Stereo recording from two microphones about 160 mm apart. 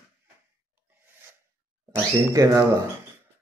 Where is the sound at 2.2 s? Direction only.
20° right (ahead or behind).